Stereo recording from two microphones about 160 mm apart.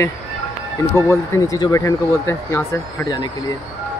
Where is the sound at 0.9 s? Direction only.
20° left (ahead or behind).